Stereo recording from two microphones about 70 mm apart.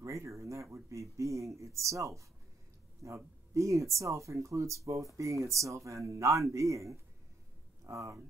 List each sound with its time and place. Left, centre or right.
0.0 s speech: right